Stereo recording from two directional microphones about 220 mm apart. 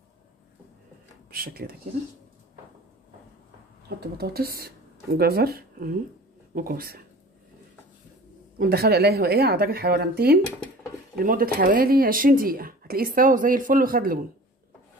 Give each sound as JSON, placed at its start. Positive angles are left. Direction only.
{"t": 1.3, "sound": "speech", "side_deg": -45}
{"t": 4.0, "sound": "speech", "side_deg": -45}
{"t": 8.5, "sound": "speech", "side_deg": -45}